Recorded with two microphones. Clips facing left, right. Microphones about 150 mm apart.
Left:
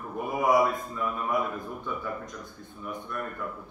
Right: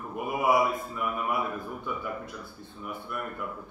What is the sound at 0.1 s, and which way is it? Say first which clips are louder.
Speech: left 1 dB; 10° right (ahead or behind).